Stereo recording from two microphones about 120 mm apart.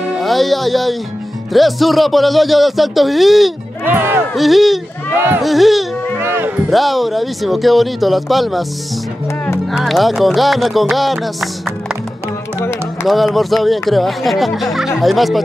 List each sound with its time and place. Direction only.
0.2 s speech: centre (ahead or behind)
3.8 s music: 15° right (ahead or behind)
4.4 s speech: centre (ahead or behind)
6.2 s music: 15° right (ahead or behind)
6.7 s speech: centre (ahead or behind)
9.7 s speech: centre (ahead or behind)
13.0 s speech: centre (ahead or behind)